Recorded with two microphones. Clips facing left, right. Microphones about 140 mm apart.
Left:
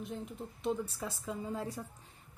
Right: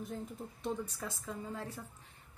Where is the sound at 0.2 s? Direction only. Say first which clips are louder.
Left 2 dB; 15° left (ahead or behind).